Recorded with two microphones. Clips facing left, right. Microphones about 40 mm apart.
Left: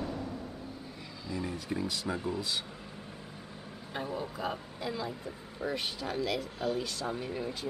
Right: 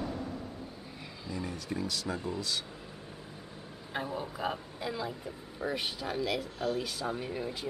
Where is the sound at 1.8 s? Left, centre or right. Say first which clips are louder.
Even; centre.